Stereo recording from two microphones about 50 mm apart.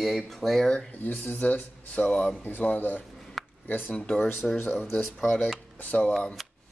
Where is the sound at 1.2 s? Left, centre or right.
Left.